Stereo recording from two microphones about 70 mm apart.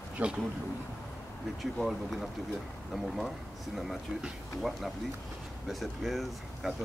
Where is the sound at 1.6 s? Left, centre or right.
Centre.